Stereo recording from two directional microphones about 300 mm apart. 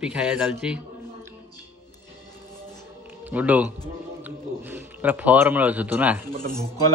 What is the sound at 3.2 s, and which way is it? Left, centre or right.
A man's voice, centre.